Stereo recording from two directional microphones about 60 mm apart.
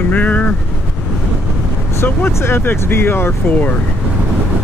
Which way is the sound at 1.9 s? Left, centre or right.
Left.